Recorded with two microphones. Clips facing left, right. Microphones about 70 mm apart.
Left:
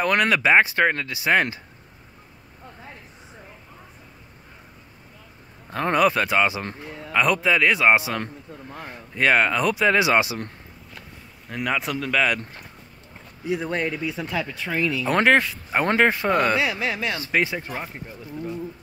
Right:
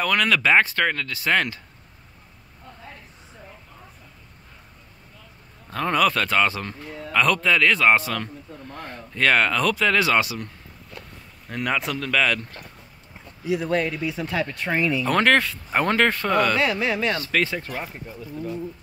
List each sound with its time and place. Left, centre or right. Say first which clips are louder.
0.0 s speech: left 1 dB; left
5.9 s speech: left 1 dB; left
11.4 s speech: even; centre
13.7 s speech: right 5 dB; centre
14.1 s speech: right 2 dB; centre
15.0 s speech: left 1 dB; centre
15.3 s speech: left 1 dB; centre
17.2 s speech: even; centre